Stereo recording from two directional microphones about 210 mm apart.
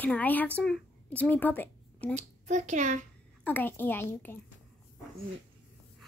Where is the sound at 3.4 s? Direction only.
10° left (ahead or behind).